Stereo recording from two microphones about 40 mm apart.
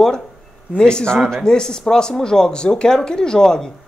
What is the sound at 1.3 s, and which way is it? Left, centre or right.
Speech, centre.